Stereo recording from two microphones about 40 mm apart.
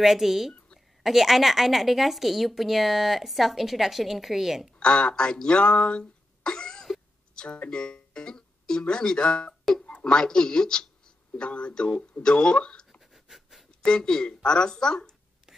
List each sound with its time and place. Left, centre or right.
0.0 s a woman's voice: centre
4.7 s a sound: left
7.3 s speech: left
13.1 s writing: centre
13.7 s speech: centre